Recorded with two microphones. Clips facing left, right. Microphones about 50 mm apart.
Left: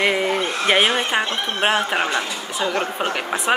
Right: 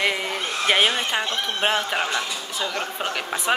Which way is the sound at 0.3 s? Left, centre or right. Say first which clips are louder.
Left 4 dB; left.